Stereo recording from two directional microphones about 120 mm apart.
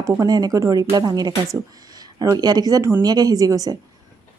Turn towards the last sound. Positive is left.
turn(degrees=-30)  # may be behind; listen again after turning